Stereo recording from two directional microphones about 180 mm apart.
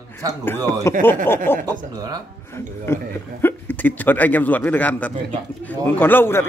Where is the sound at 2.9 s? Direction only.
15° left (ahead or behind).